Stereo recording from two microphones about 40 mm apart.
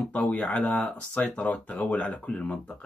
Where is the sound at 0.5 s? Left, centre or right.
Left.